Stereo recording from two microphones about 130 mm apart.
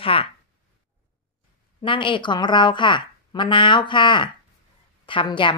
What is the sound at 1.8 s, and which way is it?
A woman's voice, 40° left (ahead or behind).